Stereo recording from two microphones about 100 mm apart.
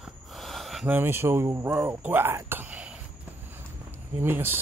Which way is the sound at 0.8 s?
20° right (ahead or behind).